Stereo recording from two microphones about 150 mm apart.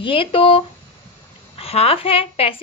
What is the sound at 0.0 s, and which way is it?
A woman's voice, 35° left (ahead or behind).